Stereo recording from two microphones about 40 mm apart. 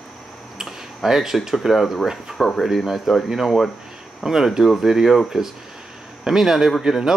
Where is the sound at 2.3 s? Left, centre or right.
Centre.